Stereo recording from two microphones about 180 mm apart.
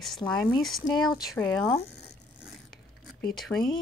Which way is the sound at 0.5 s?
Centre (ahead or behind).